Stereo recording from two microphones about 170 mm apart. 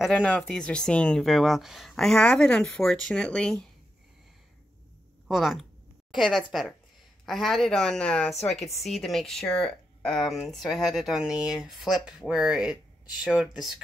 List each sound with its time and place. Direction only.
0.0 s speech: 5° left (ahead or behind)
5.3 s speech: centre (ahead or behind)